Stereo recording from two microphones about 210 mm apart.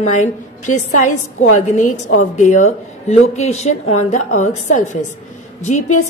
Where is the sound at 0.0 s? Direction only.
35° left (ahead or behind).